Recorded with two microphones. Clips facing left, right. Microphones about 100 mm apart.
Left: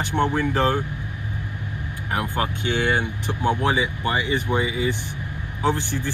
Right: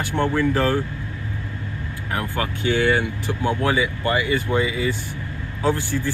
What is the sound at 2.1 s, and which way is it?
Speech, 20° left (ahead or behind).